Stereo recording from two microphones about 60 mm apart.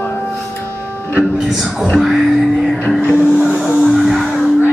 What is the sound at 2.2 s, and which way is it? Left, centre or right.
Music, centre.